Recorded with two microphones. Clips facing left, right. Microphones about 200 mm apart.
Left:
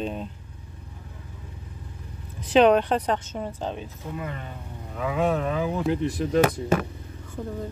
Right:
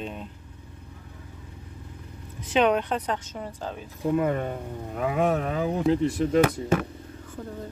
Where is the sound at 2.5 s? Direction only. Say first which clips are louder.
Left 5 dB; 35° left (ahead or behind).